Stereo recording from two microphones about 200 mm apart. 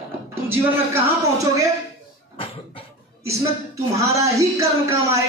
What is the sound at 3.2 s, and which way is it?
Speech, 15° right (ahead or behind).